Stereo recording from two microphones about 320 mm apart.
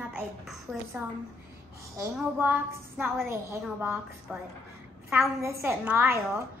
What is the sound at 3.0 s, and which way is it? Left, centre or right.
A woman's voice, centre.